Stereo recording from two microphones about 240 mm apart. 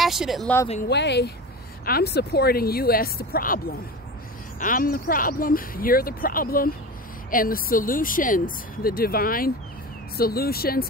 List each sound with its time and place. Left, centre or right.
0.0 s speech: centre
0.8 s speech: left